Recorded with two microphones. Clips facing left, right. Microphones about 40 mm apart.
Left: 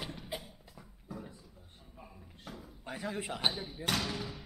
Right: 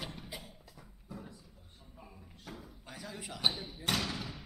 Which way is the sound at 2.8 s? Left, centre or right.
Left.